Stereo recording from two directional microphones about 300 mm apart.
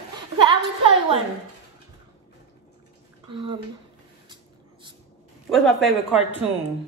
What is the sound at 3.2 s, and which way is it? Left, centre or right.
Speech, centre.